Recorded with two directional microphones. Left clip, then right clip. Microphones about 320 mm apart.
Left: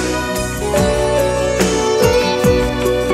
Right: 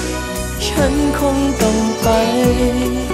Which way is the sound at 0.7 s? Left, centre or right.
Right.